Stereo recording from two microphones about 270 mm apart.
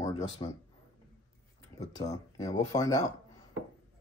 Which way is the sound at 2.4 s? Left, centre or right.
Centre.